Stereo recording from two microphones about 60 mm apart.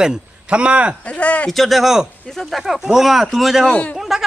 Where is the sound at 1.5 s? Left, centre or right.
Centre.